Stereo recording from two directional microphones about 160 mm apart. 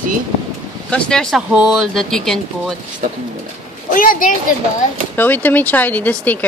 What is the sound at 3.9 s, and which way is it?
Speech, 60° left (ahead or behind).